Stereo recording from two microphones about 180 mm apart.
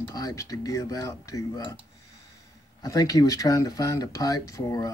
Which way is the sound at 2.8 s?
20° left (ahead or behind).